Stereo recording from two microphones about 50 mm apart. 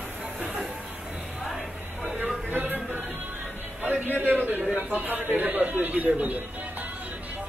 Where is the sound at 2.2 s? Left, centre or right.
Right.